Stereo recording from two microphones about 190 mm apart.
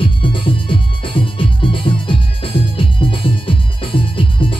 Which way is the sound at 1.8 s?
25° left (ahead or behind).